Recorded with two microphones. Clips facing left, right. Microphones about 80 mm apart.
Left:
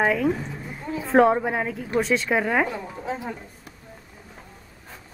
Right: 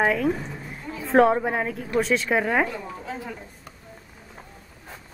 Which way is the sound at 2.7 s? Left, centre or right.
Left.